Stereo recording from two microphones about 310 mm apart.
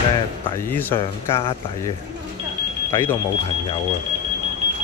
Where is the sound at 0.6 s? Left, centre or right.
Centre.